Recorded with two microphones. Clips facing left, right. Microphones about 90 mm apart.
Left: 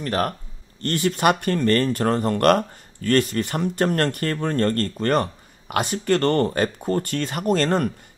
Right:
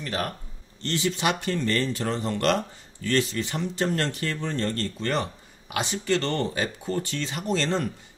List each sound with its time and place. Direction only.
0.0 s speech: 50° left (ahead or behind)